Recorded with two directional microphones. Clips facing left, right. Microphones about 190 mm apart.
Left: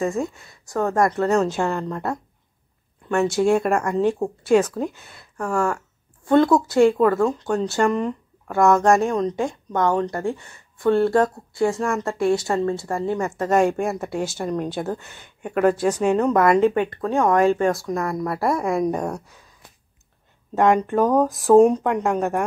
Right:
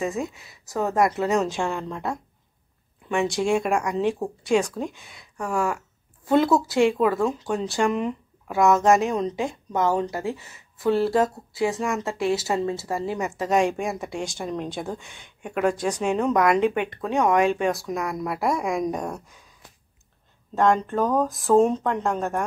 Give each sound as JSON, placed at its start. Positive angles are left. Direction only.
{"t": 0.0, "sound": "speech", "side_deg": 0}
{"t": 20.5, "sound": "speech", "side_deg": 15}